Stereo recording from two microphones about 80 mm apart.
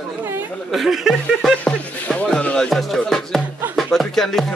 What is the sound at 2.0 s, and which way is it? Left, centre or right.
Speech, centre.